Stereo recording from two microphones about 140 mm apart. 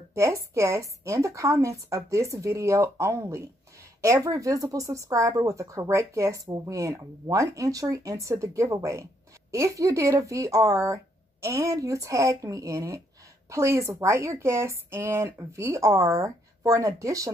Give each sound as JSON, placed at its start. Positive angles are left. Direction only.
{"t": 0.1, "sound": "a woman's voice", "side_deg": -20}